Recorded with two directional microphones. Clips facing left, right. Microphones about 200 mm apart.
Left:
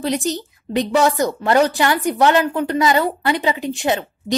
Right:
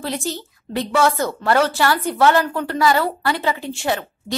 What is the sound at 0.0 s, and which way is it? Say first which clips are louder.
A woman's voice: left 5 dB; 20° left (ahead or behind).